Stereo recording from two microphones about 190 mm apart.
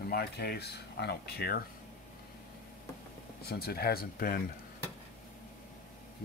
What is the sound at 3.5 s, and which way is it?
Speech, 55° left (ahead or behind).